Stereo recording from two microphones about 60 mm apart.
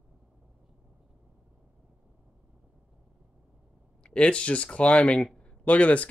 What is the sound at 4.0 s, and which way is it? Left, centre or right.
Speech, centre.